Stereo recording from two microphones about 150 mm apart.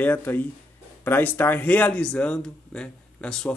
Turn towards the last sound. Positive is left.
turn(degrees=5)  # may be behind; listen again after turning